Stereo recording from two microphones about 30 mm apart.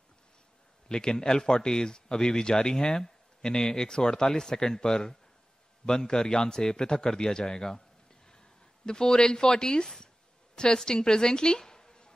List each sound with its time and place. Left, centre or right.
0.8 s a man's voice: left
8.8 s speech: left
10.5 s a sound: left
10.9 s a woman's voice: left